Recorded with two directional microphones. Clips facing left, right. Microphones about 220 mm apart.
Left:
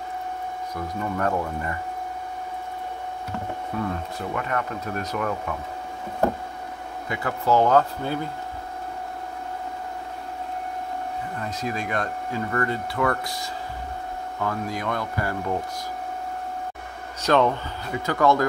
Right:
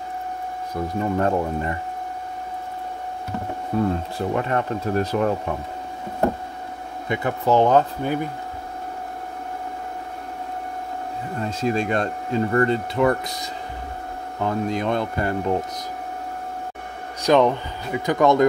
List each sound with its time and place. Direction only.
1.0 s speech: 25° right (ahead or behind)
3.7 s speech: 30° right (ahead or behind)
7.1 s speech: 20° right (ahead or behind)
11.3 s speech: 25° right (ahead or behind)
17.2 s speech: 15° right (ahead or behind)